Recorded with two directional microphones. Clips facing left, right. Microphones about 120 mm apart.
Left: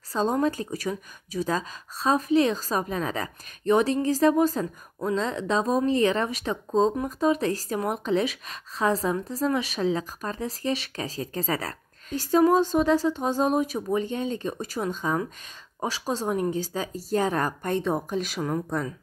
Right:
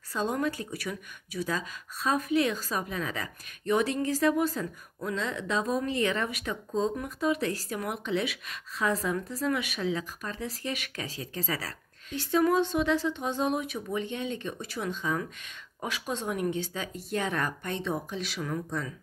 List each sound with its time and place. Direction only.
0.1 s speech: 35° left (ahead or behind)